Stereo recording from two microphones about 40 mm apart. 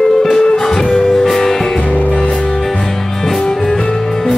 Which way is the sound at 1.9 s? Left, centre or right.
Left.